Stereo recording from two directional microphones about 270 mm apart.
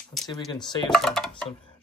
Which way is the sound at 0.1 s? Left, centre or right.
Centre.